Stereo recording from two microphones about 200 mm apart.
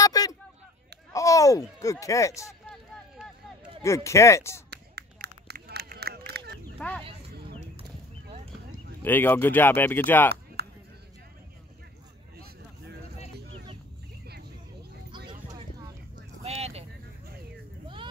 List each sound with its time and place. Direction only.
0.0 s a sound: 20° left (ahead or behind)
1.1 s speech: 15° left (ahead or behind)
2.7 s a sound: centre (ahead or behind)
3.8 s speech: 15° left (ahead or behind)
4.6 s run: 55° right (ahead or behind)
6.8 s speech: 5° left (ahead or behind)
9.0 s speech: 10° left (ahead or behind)
10.3 s chop: 55° right (ahead or behind)
14.2 s vehicle: 55° right (ahead or behind)
15.0 s a sound: 25° right (ahead or behind)
16.2 s vehicle: 30° right (ahead or behind)